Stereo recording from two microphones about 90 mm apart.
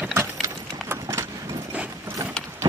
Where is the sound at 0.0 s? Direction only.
30° right (ahead or behind).